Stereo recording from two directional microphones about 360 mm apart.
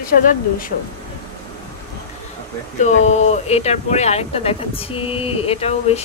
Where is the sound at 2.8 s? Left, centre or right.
Centre.